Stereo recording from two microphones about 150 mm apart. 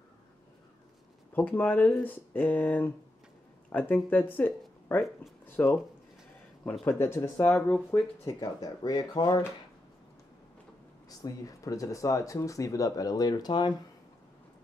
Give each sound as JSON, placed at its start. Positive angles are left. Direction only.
{"t": 1.3, "sound": "speech", "side_deg": 10}
{"t": 6.8, "sound": "speech", "side_deg": 15}
{"t": 8.4, "sound": "speech", "side_deg": 25}
{"t": 11.1, "sound": "speech", "side_deg": 25}